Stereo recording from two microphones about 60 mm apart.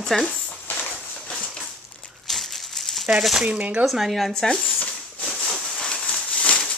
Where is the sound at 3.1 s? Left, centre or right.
Centre.